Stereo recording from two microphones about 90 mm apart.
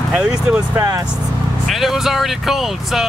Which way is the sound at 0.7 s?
40° right (ahead or behind).